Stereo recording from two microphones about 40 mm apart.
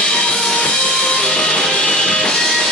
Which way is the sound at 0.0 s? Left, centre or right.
Centre.